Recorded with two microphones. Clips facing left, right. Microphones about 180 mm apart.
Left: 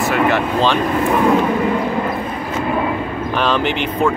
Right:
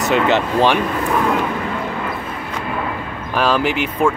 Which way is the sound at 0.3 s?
15° right (ahead or behind).